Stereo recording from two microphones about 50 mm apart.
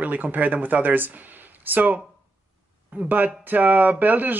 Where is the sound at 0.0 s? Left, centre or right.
Right.